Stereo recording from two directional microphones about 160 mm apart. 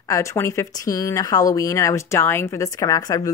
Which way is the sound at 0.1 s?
20° left (ahead or behind).